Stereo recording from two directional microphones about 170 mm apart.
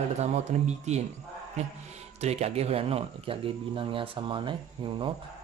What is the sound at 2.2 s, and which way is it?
Speech, 40° right (ahead or behind).